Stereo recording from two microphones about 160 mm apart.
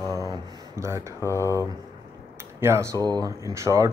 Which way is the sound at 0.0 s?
20° right (ahead or behind).